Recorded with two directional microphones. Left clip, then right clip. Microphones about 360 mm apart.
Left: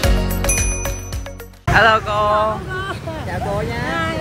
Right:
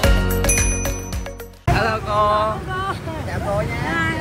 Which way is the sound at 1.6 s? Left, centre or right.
Centre.